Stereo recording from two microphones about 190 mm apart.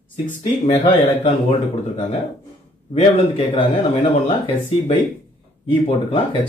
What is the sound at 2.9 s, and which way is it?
Speech, 30° left (ahead or behind).